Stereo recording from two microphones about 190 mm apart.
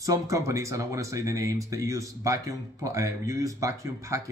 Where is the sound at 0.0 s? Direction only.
15° right (ahead or behind).